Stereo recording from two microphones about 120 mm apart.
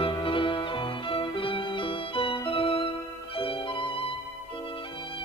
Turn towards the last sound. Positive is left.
turn(degrees=45)  # may be behind; listen again after turning